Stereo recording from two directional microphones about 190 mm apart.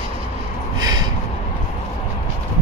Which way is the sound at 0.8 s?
20° right (ahead or behind).